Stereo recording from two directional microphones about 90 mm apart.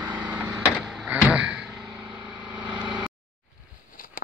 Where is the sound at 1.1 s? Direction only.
15° right (ahead or behind).